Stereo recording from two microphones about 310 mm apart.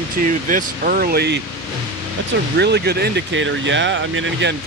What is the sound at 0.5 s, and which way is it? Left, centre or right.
Speech, right.